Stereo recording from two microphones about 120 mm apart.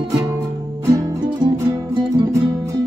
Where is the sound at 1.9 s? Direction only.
30° right (ahead or behind).